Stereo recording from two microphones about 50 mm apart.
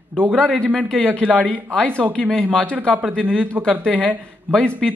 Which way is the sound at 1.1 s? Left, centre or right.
Left.